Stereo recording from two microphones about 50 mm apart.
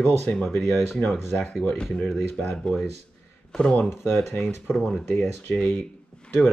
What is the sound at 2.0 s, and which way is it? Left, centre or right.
Speech, centre.